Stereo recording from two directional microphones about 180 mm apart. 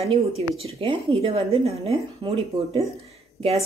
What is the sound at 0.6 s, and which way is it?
A woman's voice, 30° right (ahead or behind).